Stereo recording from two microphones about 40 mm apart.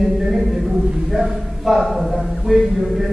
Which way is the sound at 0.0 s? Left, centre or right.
Centre.